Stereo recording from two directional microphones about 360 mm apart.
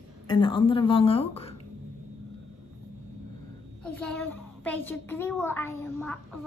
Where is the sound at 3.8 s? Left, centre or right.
Centre.